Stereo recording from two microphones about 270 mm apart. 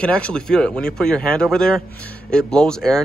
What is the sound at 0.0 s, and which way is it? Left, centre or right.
Speech, centre.